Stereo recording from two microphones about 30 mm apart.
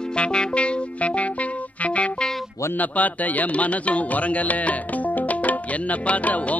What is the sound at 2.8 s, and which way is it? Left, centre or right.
Speech, left.